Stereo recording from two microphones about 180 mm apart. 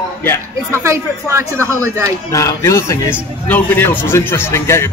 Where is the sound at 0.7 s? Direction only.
15° right (ahead or behind).